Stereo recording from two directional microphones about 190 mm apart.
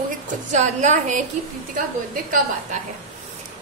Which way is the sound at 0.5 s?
40° right (ahead or behind).